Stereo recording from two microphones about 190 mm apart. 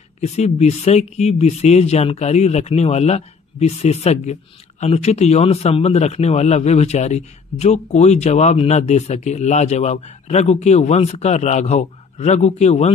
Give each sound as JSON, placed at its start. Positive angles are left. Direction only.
{"t": 0.2, "sound": "speech", "side_deg": 35}